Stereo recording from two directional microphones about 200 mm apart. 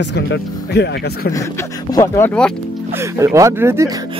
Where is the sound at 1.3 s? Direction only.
15° left (ahead or behind).